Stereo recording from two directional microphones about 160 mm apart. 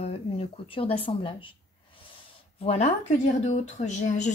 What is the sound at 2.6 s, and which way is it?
Speech, 40° left (ahead or behind).